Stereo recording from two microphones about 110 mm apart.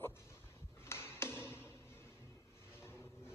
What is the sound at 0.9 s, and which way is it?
Tap, 20° left (ahead or behind).